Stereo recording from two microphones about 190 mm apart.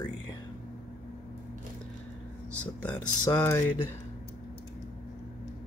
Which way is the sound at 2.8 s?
10° left (ahead or behind).